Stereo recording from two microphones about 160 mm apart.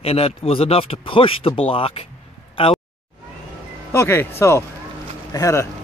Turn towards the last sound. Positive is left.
turn(degrees=20)  # may be behind; listen again after turning